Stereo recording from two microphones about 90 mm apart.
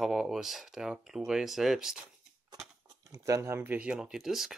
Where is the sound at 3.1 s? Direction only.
35° right (ahead or behind).